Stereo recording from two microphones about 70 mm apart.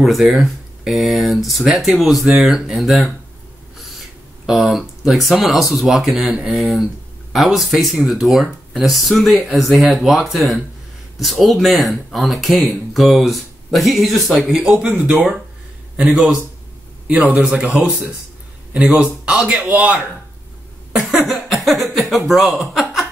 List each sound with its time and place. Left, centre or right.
0.0 s speech: centre
4.5 s speech: centre
15.1 s a man's voice: centre
18.9 s a man's voice: centre
20.9 s cough: centre
21.6 s speech: centre